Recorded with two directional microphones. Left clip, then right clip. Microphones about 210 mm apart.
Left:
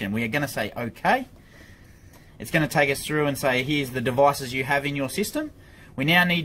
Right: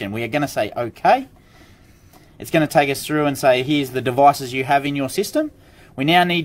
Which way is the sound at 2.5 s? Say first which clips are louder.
Right 5 dB; 50° right (ahead or behind).